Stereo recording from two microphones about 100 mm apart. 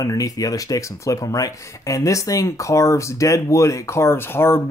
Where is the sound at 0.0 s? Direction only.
35° left (ahead or behind).